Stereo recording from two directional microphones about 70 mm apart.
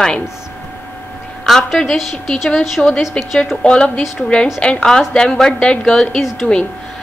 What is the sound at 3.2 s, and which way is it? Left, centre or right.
A woman's voice, centre.